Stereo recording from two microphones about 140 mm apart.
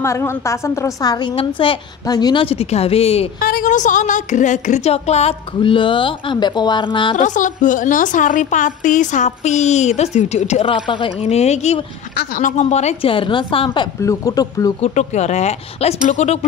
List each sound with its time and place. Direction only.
0.0 s a woman's voice: 20° left (ahead or behind)
1.3 s speech: 40° left (ahead or behind)
2.0 s a woman's voice: 30° left (ahead or behind)
2.4 s speech: 45° left (ahead or behind)
3.4 s a woman's voice: 80° left; by 5.3 s 50° left (ahead or behind)
5.6 s speech: 35° left (ahead or behind)
7.2 s a woman's voice: 65° left (ahead or behind)
10.7 s speech: 35° left (ahead or behind); by 11.8 s 50° left (ahead or behind)
12.4 s speech: 65° left (ahead or behind); by 13.8 s 35° left (ahead or behind)
14.0 s a woman's voice: 25° left (ahead or behind)
14.8 s speech: 55° left (ahead or behind)